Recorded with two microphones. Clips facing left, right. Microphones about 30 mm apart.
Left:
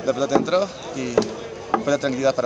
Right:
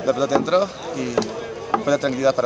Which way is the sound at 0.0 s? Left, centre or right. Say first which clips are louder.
Right 1 dB; centre.